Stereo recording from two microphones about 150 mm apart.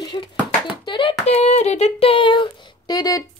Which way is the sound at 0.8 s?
35° left (ahead or behind).